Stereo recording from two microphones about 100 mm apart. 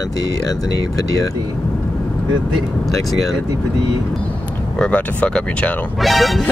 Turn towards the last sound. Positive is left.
turn(degrees=0)  # may be behind; listen again after turning